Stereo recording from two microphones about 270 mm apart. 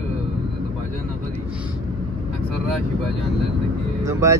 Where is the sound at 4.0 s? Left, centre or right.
Centre.